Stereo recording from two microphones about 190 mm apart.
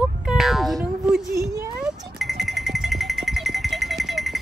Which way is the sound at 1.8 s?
Centre (ahead or behind).